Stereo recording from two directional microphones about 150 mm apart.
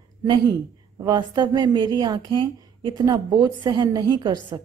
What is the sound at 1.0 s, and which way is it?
A woman's voice, 30° right (ahead or behind).